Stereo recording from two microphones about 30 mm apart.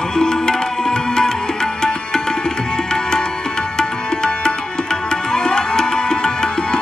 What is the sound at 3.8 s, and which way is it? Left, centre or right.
Tabla, left.